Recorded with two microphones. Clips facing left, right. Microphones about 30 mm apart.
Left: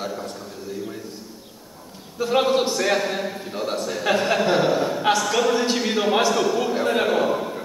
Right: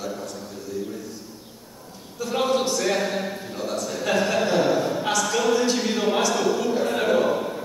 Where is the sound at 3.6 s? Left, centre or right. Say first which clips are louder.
Left 2 dB; left.